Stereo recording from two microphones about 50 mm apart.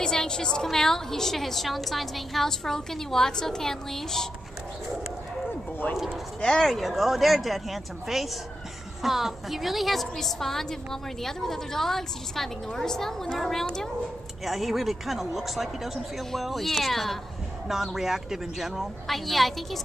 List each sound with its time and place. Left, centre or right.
0.0 s a woman's voice: centre
5.5 s a sound: left
6.6 s a woman's voice: centre
14.4 s a woman's voice: centre